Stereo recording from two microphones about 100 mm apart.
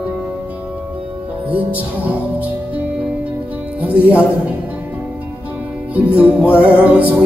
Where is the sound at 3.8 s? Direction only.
15° right (ahead or behind).